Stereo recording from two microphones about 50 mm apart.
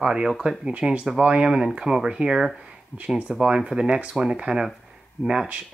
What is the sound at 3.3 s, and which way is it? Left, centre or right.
Speech, centre.